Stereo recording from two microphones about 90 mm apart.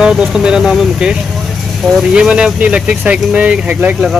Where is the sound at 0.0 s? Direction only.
10° right (ahead or behind).